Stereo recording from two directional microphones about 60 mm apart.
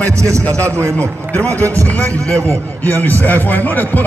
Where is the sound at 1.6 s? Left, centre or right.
Right.